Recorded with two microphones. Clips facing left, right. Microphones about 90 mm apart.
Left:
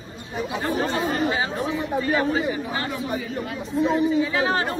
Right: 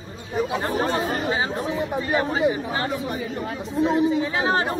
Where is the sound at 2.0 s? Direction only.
25° right (ahead or behind).